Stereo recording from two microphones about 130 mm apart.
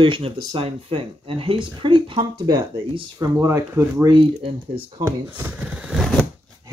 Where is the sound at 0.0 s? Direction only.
40° right (ahead or behind).